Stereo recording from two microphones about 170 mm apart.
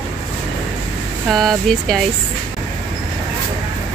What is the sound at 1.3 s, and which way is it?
Speech, centre (ahead or behind).